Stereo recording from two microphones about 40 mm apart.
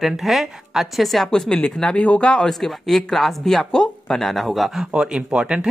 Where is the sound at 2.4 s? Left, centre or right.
Centre.